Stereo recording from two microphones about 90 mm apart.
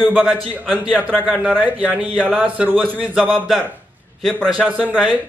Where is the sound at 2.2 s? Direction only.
15° right (ahead or behind).